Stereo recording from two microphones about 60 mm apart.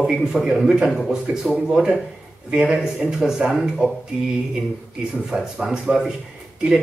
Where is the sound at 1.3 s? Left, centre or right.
Centre.